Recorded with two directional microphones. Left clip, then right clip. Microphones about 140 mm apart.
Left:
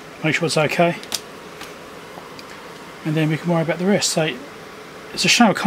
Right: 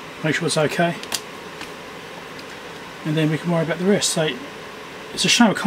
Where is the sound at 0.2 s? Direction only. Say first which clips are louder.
Left 2 dB; 20° left (ahead or behind).